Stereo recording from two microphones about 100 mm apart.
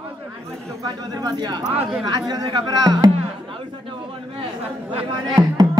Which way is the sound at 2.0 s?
45° right (ahead or behind).